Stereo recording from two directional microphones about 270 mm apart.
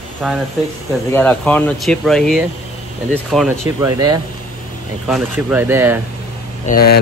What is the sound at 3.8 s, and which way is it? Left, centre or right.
Speech, centre.